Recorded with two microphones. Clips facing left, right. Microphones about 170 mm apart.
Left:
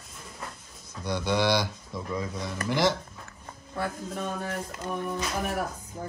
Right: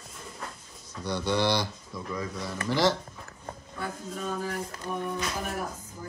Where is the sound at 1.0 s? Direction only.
15° left (ahead or behind).